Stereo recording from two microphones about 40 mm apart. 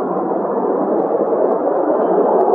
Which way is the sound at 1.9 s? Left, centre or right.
Centre.